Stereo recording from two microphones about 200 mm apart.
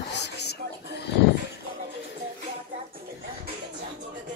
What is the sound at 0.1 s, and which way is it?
Horse, 55° left (ahead or behind).